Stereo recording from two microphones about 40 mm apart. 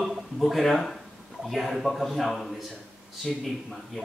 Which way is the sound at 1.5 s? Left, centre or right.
Centre.